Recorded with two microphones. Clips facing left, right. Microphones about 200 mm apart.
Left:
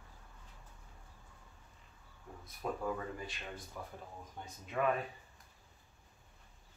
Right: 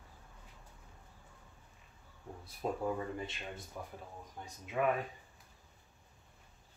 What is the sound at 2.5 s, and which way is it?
Speech, 25° right (ahead or behind).